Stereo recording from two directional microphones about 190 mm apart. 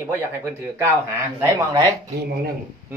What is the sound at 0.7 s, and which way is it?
Speech, 10° right (ahead or behind).